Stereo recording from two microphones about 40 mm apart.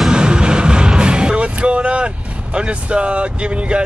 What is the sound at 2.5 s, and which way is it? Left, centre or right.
Speech, right.